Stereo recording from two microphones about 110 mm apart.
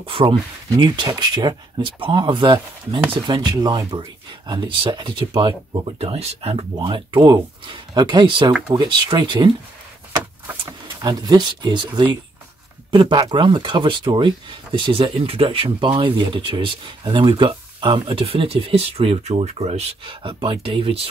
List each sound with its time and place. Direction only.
0.0 s speech: 55° right (ahead or behind)
0.7 s speech: 45° right (ahead or behind)
4.5 s speech: 45° right (ahead or behind)
5.9 s speech: 65° right (ahead or behind); by 9.5 s 45° right (ahead or behind)
11.0 s speech: 40° right (ahead or behind); by 21.1 s 60° right (ahead or behind)